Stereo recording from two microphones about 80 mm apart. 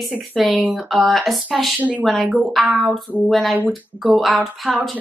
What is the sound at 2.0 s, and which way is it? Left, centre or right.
Speech, centre.